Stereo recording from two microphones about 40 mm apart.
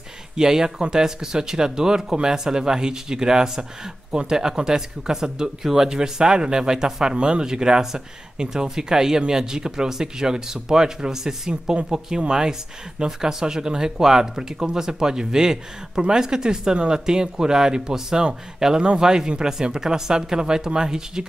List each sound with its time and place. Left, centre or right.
0.4 s speech: centre